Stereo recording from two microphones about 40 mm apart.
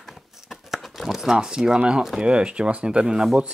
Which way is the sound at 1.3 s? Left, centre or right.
Centre.